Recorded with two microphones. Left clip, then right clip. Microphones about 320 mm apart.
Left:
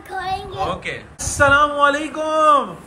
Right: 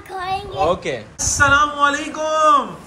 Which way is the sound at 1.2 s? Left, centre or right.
Centre.